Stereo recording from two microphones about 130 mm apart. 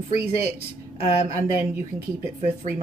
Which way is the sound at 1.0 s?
50° left (ahead or behind).